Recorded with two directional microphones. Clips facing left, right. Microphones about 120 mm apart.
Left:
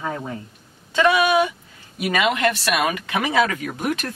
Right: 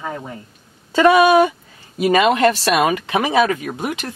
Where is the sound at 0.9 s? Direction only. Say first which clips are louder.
Right 6 dB; 40° right (ahead or behind); by 4.1 s 20° right (ahead or behind).